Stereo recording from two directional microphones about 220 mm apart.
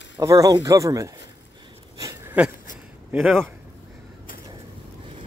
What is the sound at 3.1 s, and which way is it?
Speech, 5° right (ahead or behind).